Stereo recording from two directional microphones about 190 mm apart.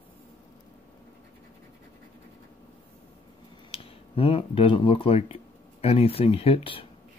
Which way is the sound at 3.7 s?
30° left (ahead or behind).